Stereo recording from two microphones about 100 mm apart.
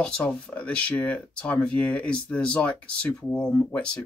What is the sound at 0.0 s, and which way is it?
Speech, 10° left (ahead or behind).